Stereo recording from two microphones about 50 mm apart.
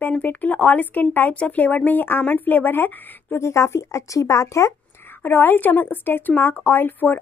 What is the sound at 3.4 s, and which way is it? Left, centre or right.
Speech, left.